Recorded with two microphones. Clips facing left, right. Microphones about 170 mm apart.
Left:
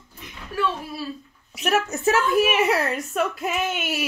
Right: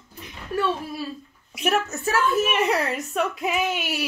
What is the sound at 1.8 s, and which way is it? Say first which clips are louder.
Speech: left 2 dB; 20° left (ahead or behind).